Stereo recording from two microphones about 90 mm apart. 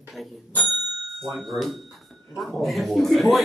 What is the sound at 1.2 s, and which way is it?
Speech, centre (ahead or behind).